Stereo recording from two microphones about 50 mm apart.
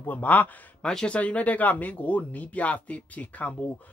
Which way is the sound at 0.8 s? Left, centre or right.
Centre.